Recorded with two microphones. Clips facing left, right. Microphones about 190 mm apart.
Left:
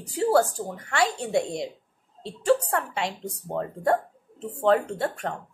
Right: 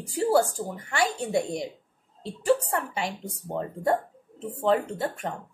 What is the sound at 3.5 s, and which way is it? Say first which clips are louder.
Speech: left 1 dB; 25° right (ahead or behind).